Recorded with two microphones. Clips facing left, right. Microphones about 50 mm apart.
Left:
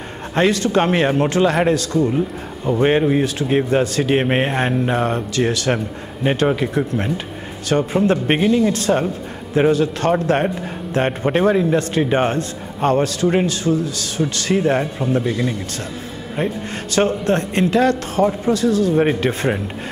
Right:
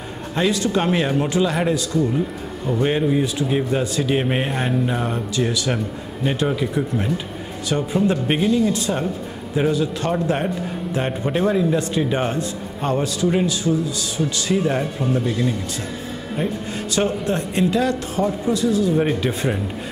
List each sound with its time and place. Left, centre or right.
0.4 s a man's voice: left
1.0 s speech: left
1.3 s a man's voice: left
2.8 s speech: left
3.8 s a man's voice: left
4.1 s speech: left
6.2 s speech: left
8.7 s a man's voice: left
11.1 s a man's voice: left
14.6 s speech: left
16.9 s a man's voice: left